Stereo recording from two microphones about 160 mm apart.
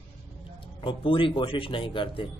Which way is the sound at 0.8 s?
35° left (ahead or behind).